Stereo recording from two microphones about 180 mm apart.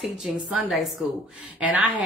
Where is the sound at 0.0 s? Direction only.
Centre (ahead or behind).